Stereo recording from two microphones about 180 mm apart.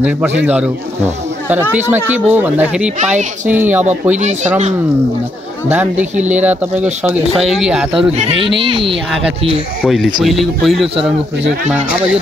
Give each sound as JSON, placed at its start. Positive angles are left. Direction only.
{"t": 0.4, "sound": "speech", "side_deg": -10}
{"t": 4.2, "sound": "speech", "side_deg": -40}
{"t": 5.7, "sound": "speech", "side_deg": -10}
{"t": 8.2, "sound": "speech", "side_deg": -30}
{"t": 9.8, "sound": "speech", "side_deg": 0}